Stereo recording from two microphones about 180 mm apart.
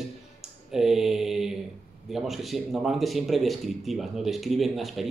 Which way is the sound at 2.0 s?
Centre (ahead or behind).